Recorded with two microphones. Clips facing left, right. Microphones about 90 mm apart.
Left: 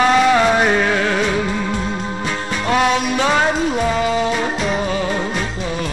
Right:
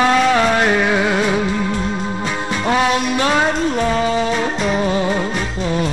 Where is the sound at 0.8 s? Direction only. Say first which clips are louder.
Right 1 dB; 10° right (ahead or behind).